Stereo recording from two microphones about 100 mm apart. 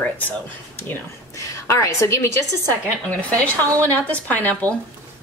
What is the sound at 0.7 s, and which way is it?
Speech, 20° left (ahead or behind).